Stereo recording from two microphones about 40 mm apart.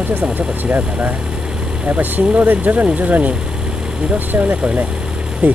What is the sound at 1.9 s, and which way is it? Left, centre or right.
Speech, right.